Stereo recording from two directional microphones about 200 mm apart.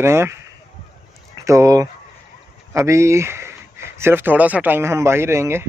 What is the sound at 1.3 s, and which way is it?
Speech, 15° right (ahead or behind).